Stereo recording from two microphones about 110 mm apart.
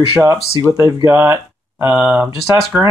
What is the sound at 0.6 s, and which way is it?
Speech, 30° right (ahead or behind).